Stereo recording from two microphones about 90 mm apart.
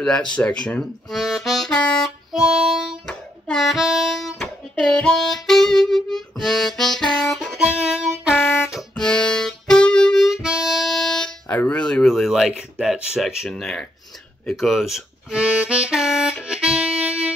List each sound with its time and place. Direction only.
0.3 s speech: 10° left (ahead or behind)
1.1 s harmonica: centre (ahead or behind)
1.7 s harmonica: 10° left (ahead or behind)
2.3 s harmonica: 5° right (ahead or behind)
3.1 s hands: 5° left (ahead or behind)
3.7 s harmonica: 5° right (ahead or behind)
8.4 s music: 25° left (ahead or behind)
8.9 s harmonica: 10° left (ahead or behind)
10.2 s harmonica: 5° right (ahead or behind)
11.4 s a sound: 20° left (ahead or behind)
11.8 s a sound: 5° left (ahead or behind)
13.5 s speech: 5° left (ahead or behind)
14.7 s harmonica: 5° right (ahead or behind)